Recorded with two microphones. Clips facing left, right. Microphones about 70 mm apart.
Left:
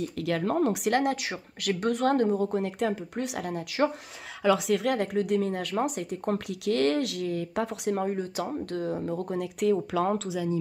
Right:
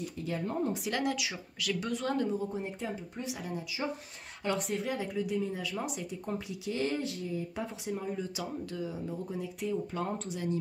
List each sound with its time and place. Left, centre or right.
0.2 s speech: left
0.9 s speech: left
4.6 s speech: left
8.1 s speech: left